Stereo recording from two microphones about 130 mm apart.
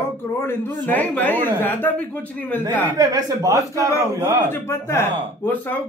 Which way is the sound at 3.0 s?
25° right (ahead or behind).